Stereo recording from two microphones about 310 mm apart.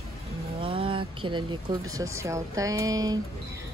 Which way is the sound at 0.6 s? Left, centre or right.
Centre.